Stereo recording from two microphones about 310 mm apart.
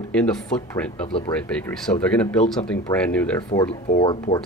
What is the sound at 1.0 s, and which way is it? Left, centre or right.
Speech, centre.